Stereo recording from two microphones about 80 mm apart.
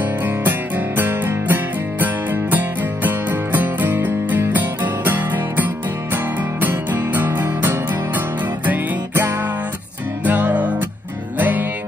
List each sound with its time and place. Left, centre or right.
0.4 s music: right